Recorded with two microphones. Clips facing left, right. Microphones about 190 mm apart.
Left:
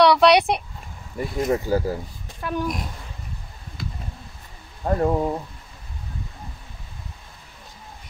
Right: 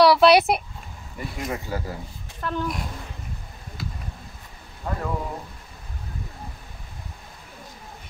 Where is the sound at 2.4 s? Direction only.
10° left (ahead or behind).